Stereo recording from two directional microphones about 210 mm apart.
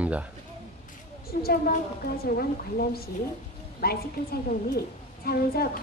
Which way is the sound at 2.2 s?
45° left (ahead or behind).